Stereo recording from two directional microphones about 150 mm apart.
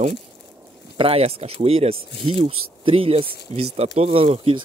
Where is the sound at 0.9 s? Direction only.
40° right (ahead or behind).